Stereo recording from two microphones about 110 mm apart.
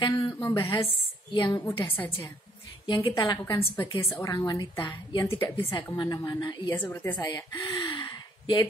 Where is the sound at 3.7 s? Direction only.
45° left (ahead or behind).